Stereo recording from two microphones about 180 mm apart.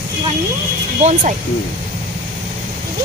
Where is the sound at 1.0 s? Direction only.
45° right (ahead or behind).